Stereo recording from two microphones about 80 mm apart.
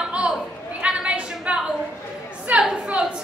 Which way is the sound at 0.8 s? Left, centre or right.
Centre.